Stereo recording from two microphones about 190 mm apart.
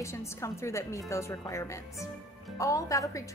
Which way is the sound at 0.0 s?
15° left (ahead or behind).